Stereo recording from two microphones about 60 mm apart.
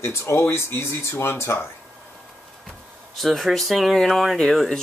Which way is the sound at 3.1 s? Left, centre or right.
Centre.